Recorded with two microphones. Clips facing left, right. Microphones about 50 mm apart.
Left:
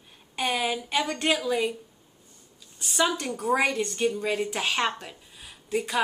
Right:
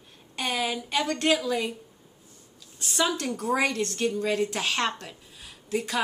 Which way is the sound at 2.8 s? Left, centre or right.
Centre.